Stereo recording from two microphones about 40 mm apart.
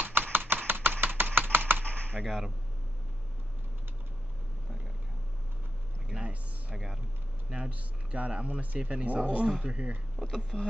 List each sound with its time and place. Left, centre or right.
0.0 s a sound: right
1.5 s typing: right
1.9 s typing: left
2.2 s speech: centre
6.0 s a sound: centre
7.4 s speech: centre
7.7 s speech: right
9.5 s speech: right